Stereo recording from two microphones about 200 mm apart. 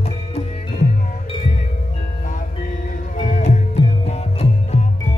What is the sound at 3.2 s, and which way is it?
Music, 35° left (ahead or behind).